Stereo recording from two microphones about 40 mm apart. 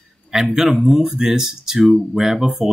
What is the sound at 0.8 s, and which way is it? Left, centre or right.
Speech, centre.